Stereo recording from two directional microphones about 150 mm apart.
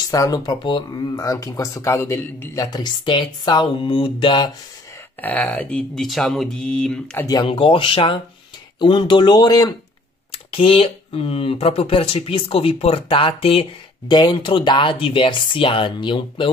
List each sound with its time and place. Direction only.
0.1 s speech: 25° left (ahead or behind)
5.2 s speech: 10° left (ahead or behind)
7.2 s speech: 30° left (ahead or behind)